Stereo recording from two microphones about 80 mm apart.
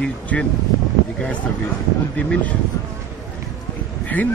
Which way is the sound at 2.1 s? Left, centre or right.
Centre.